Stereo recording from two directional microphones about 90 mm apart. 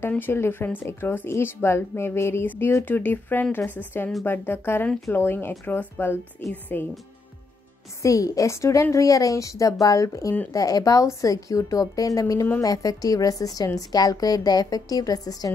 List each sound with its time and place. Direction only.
0.1 s a woman's voice: 25° left (ahead or behind)
8.0 s a woman's voice: 40° left (ahead or behind)